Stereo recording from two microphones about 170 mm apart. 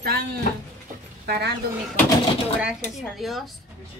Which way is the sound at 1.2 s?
65° right (ahead or behind).